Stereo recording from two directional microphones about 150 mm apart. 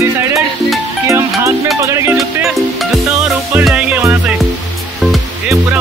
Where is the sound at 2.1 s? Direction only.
Centre (ahead or behind).